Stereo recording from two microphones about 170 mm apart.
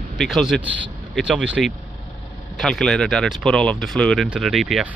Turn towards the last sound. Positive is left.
turn(degrees=0)  # may be behind; listen again after turning